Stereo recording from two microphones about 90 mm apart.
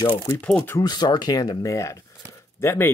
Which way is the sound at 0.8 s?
50° left (ahead or behind).